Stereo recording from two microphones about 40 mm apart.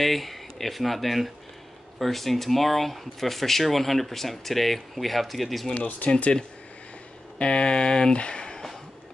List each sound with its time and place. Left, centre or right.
0.0 s speech: centre
5.8 s speech: left
7.3 s speech: left